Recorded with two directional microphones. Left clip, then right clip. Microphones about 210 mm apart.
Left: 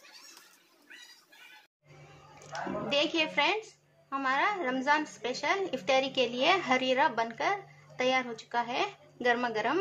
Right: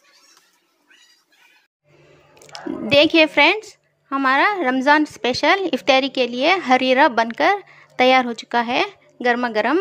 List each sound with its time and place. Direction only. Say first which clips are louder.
2.5 s a woman's voice: right 14 dB; 40° right (ahead or behind)